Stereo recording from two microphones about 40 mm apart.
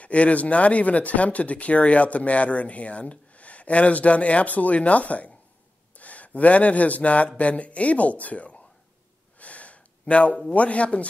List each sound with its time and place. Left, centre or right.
0.0 s speech: left
9.4 s a sound: left
10.5 s speech: left